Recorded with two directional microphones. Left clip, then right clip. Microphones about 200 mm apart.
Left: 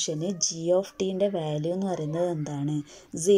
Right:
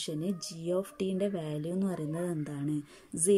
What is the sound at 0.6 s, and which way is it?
A woman's voice, 5° right (ahead or behind).